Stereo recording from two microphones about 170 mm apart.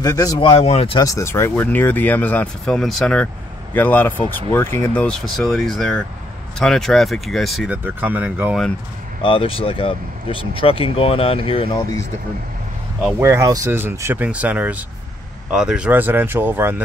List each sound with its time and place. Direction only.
0.0 s speech: 20° left (ahead or behind)
1.0 s speech: 15° left (ahead or behind); by 8.5 s 10° right (ahead or behind)
9.2 s speech: 30° left (ahead or behind)
13.2 s speech: 15° right (ahead or behind)